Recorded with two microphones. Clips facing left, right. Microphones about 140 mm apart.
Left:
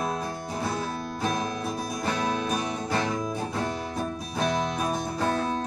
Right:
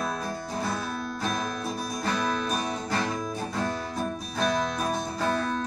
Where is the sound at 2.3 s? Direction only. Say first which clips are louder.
Left 1 dB; 20° left (ahead or behind).